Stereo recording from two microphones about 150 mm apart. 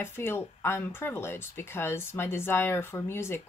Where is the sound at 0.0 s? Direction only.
15° left (ahead or behind).